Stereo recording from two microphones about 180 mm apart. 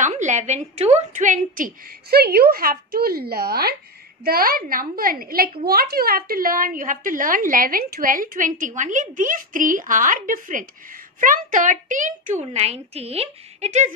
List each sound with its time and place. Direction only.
0.0 s a woman's voice: 40° right (ahead or behind)